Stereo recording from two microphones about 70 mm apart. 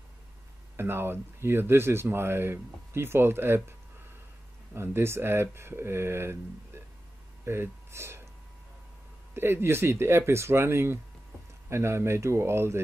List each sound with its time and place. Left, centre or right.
0.7 s speech: right
4.7 s speech: right
9.3 s speech: right